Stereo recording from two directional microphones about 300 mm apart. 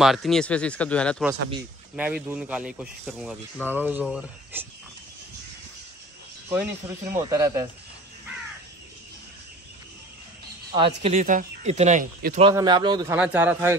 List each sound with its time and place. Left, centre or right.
0.0 s speech: centre
6.5 s a man's voice: centre
11.0 s speech: right
12.4 s a man's voice: centre